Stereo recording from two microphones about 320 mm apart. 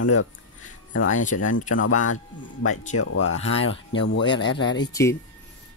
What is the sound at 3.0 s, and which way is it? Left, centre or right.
Speech, left.